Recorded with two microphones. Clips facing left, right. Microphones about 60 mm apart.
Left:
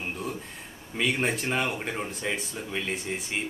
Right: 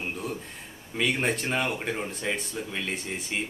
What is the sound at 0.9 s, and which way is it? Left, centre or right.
Speech, centre.